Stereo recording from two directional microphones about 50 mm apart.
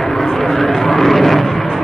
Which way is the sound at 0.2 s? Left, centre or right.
Centre.